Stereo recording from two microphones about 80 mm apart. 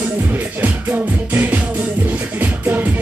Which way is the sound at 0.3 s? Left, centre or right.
Right.